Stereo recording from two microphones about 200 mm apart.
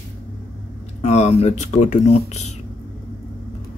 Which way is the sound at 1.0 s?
35° left (ahead or behind).